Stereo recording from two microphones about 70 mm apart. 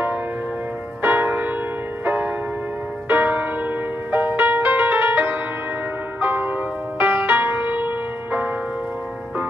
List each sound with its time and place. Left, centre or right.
1.0 s music: right